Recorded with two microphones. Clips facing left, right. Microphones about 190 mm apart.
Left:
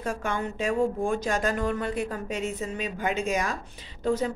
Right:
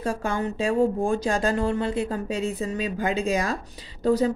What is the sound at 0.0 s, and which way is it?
Speech, 30° right (ahead or behind).